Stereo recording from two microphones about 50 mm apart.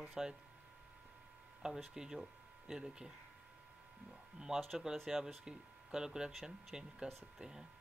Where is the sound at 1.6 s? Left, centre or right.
Centre.